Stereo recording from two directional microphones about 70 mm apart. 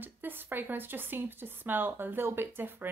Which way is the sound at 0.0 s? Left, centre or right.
Right.